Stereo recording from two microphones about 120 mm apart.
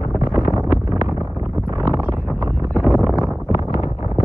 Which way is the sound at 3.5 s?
60° left (ahead or behind).